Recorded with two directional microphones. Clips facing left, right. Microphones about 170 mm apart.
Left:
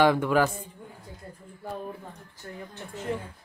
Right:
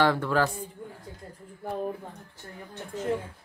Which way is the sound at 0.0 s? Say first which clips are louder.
Left 2 dB; 15° left (ahead or behind).